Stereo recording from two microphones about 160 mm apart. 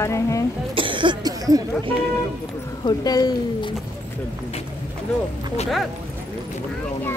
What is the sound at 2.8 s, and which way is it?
Speech, 25° left (ahead or behind).